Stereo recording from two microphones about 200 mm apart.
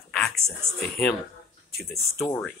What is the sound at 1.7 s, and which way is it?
Speech, centre (ahead or behind).